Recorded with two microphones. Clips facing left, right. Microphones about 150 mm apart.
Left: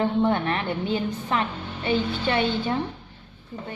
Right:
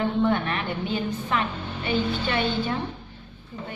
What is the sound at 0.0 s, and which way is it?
A woman's voice, 30° left (ahead or behind).